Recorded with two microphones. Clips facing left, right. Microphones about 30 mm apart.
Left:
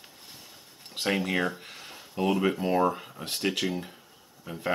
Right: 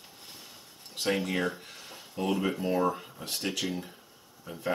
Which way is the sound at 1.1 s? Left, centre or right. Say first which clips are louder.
Left 3 dB; centre.